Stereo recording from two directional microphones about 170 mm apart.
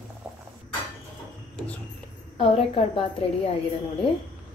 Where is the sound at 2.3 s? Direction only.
35° left (ahead or behind).